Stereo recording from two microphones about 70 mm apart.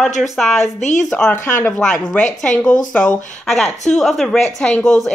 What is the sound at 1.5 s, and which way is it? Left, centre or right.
Speech, left.